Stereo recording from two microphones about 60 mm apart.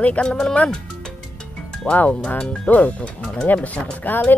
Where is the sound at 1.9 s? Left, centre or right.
Left.